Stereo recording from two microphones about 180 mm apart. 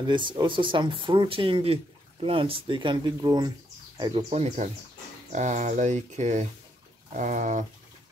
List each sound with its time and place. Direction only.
0.0 s speech: 25° right (ahead or behind)
4.3 s speech: 35° right (ahead or behind)